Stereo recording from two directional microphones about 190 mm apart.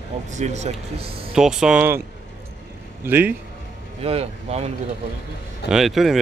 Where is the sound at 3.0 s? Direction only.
10° right (ahead or behind).